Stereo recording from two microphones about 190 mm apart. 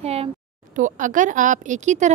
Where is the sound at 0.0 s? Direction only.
30° right (ahead or behind).